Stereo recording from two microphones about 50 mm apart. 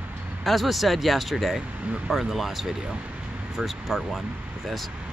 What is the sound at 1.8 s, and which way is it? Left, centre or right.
Speech, right.